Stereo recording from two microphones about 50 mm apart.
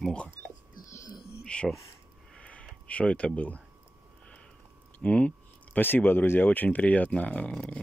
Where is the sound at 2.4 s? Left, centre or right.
Left.